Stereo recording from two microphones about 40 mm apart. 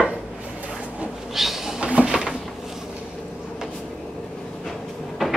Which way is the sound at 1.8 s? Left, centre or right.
Right.